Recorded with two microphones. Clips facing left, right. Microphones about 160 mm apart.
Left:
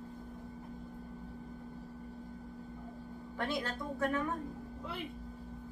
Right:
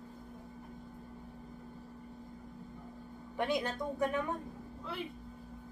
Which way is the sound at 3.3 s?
15° right (ahead or behind).